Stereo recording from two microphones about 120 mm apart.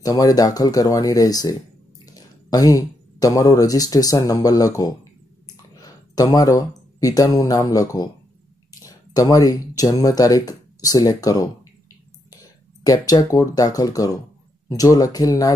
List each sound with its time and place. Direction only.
0.0 s speech: 30° left (ahead or behind)